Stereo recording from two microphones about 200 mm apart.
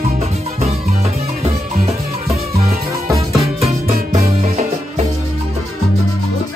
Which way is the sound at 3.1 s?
15° right (ahead or behind).